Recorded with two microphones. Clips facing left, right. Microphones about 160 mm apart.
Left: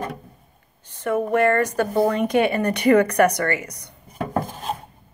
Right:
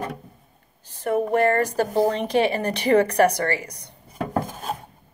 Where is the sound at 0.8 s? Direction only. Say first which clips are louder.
Even; 35° right (ahead or behind).